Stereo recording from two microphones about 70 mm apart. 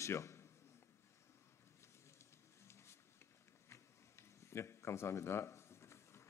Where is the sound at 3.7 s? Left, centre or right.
Left.